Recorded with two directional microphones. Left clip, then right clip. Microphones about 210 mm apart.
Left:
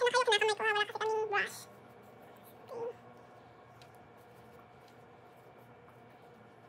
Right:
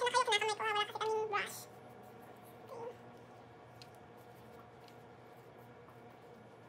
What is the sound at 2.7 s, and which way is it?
Dog, 15° left (ahead or behind).